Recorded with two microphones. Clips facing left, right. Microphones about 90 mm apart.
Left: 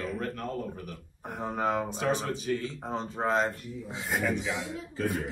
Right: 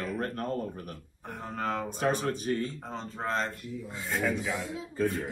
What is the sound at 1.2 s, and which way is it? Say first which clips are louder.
Speech: left 4 dB; 5° left (ahead or behind).